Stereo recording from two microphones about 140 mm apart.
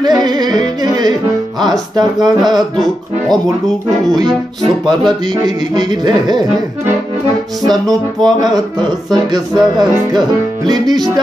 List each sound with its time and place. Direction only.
0.0 s music: 30° right (ahead or behind)
2.0 s a sound: 30° right (ahead or behind)
5.4 s music: 30° right (ahead or behind)
7.6 s music: centre (ahead or behind)
8.4 s music: 30° right (ahead or behind)